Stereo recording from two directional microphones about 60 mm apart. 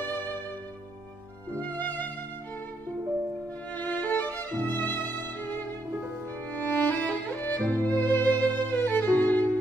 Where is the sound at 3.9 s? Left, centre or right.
Left.